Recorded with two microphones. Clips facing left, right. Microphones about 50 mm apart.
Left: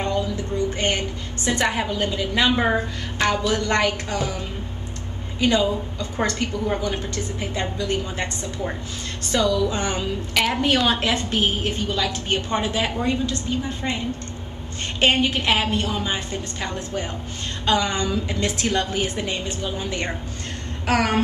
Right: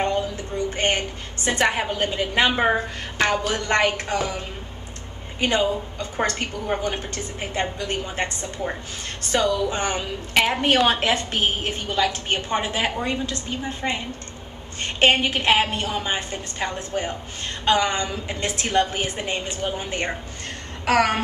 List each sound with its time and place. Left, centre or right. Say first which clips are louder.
0.0 s a sound: right 1 dB; right
0.7 s a woman's voice: right 1 dB; right
2.5 s a woman's voice: even; right
6.7 s a woman's voice: even; right
10.6 s a woman's voice: right 1 dB; right
20.8 s a sound: right 2 dB; right